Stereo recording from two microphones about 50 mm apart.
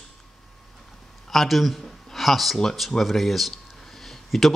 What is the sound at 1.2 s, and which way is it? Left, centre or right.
Speech, centre.